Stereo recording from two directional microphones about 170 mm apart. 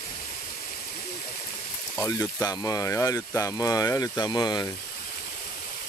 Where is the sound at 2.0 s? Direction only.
20° left (ahead or behind).